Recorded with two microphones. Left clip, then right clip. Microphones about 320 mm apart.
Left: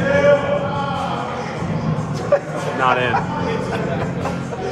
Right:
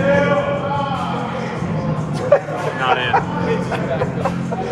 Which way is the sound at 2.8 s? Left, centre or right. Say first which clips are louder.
Left 1 dB; centre.